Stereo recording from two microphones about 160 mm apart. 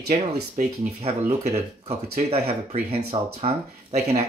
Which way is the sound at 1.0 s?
40° right (ahead or behind).